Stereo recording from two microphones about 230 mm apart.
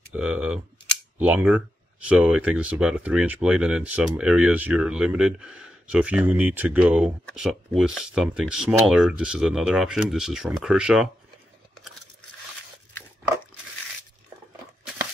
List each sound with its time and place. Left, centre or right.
0.1 s speech: centre